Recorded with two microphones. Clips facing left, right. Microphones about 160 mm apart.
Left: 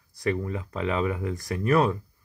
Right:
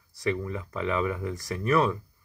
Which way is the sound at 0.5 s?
30° left (ahead or behind).